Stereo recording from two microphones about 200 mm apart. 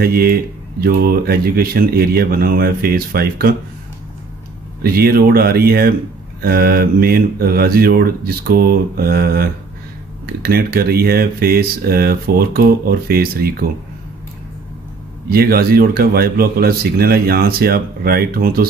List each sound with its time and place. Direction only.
0.0 s speech: 50° right (ahead or behind)
4.8 s speech: 50° right (ahead or behind)
15.2 s speech: 50° right (ahead or behind)